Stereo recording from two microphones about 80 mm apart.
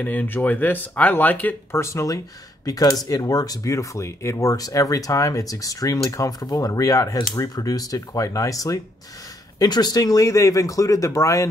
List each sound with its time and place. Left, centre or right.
0.0 s speech: left
1.7 s speech: left
9.6 s speech: left